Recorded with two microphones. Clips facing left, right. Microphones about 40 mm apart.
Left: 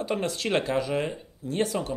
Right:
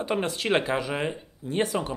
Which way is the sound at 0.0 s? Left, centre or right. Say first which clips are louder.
Right 1 dB; centre.